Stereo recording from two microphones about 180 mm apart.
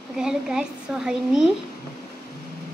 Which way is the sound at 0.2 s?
5° right (ahead or behind).